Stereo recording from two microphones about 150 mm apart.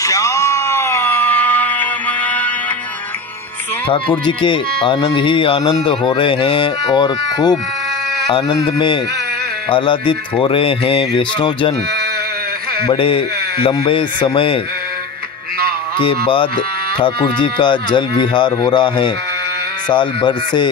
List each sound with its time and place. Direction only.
0.0 s music: 20° left (ahead or behind)
4.3 s speech: 35° left (ahead or behind)
12.8 s speech: 35° left (ahead or behind)
16.0 s speech: 35° left (ahead or behind)